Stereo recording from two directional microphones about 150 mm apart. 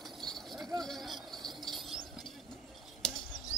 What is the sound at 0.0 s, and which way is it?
Clip-clop, centre (ahead or behind).